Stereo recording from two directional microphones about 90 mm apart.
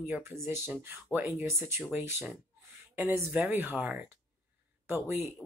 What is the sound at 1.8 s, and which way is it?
A woman's voice, 15° right (ahead or behind).